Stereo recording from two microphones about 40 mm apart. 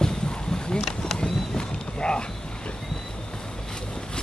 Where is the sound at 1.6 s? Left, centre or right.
Left.